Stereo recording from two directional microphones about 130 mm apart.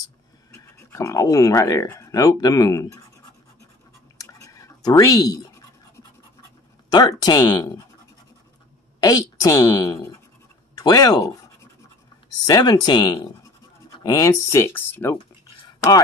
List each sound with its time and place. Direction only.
0.5 s a woman's voice: 25° left (ahead or behind)
4.2 s drip: 25° left (ahead or behind)
6.9 s speech: 30° left (ahead or behind)
9.0 s a woman's voice: 30° left (ahead or behind)
10.7 s scratch: 30° left (ahead or behind)
12.4 s a woman's voice: 30° left (ahead or behind)